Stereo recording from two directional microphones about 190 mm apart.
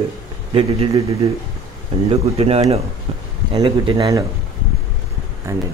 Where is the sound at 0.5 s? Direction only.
30° right (ahead or behind).